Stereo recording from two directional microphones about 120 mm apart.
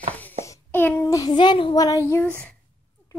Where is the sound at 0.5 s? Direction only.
15° left (ahead or behind).